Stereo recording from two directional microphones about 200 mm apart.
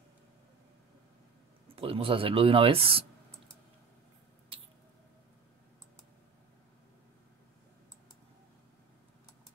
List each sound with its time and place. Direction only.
1.8 s speech: 30° right (ahead or behind)
4.5 s rodents: 30° right (ahead or behind)